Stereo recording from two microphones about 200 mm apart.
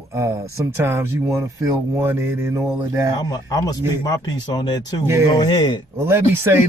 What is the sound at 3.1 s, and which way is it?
Speech, 20° left (ahead or behind).